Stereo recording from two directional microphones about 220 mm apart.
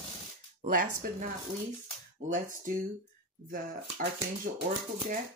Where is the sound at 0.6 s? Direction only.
40° right (ahead or behind).